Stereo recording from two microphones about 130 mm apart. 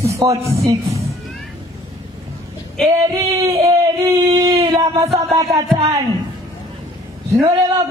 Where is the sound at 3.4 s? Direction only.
30° right (ahead or behind); by 5.0 s 45° right (ahead or behind).